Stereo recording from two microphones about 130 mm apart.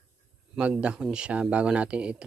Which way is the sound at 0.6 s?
10° right (ahead or behind).